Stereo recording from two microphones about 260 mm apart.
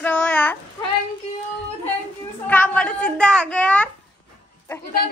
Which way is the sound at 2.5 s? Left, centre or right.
Centre.